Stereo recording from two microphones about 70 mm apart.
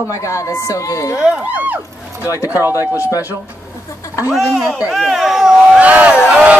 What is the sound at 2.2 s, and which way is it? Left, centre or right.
Speech, left.